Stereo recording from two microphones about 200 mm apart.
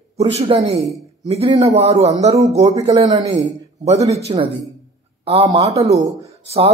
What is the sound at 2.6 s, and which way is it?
Speech, 20° right (ahead or behind).